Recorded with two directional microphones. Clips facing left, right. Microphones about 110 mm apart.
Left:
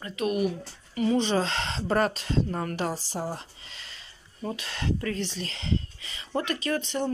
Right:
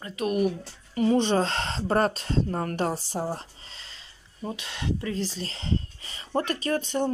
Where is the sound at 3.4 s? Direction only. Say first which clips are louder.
Right 1 dB; 30° right (ahead or behind).